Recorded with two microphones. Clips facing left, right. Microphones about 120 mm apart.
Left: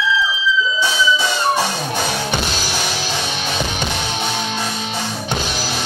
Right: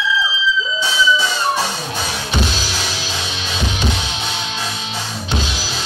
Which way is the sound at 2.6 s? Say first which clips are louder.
Left 2 dB; 55° left (ahead or behind).